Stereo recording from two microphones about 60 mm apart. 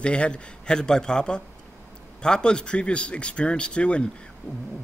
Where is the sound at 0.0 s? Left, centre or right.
Centre.